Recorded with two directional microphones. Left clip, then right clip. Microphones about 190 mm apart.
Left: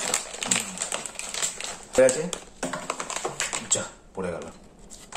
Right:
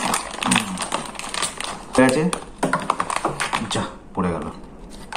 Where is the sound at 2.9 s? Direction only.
20° left (ahead or behind).